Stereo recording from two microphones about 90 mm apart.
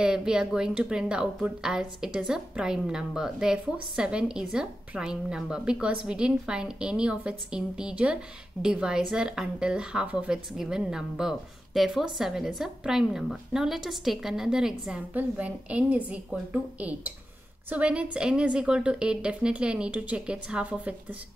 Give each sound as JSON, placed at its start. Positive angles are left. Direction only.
{"t": 0.0, "sound": "a woman's voice", "side_deg": -10}
{"t": 17.6, "sound": "a woman's voice", "side_deg": -15}